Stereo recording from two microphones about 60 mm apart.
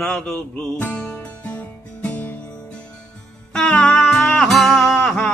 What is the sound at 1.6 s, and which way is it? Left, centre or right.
Music, left.